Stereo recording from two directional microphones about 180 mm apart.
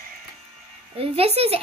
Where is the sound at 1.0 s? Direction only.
35° right (ahead or behind).